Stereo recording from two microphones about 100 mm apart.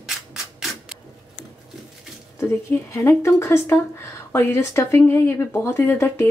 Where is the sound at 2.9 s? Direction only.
25° left (ahead or behind).